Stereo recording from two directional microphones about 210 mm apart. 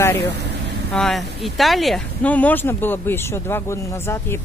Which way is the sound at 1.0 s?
Centre (ahead or behind).